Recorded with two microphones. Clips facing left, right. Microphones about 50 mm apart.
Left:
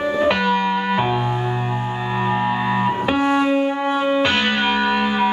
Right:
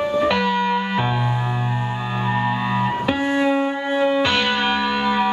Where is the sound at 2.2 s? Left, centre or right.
Centre.